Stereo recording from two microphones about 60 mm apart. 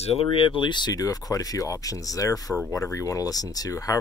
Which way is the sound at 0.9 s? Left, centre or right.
Left.